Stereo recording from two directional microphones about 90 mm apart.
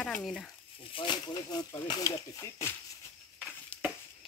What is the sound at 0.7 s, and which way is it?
Speech, 70° left (ahead or behind).